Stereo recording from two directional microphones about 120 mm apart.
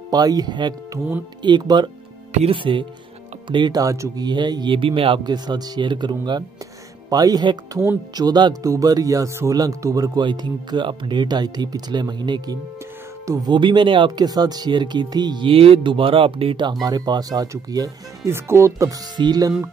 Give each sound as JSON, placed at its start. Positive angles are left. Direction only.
{"t": 0.1, "sound": "speech", "side_deg": -35}
{"t": 2.5, "sound": "music", "side_deg": -45}
{"t": 3.4, "sound": "speech", "side_deg": -40}
{"t": 4.3, "sound": "music", "side_deg": -35}
{"t": 5.2, "sound": "speech", "side_deg": -35}
{"t": 16.8, "sound": "speech", "side_deg": -35}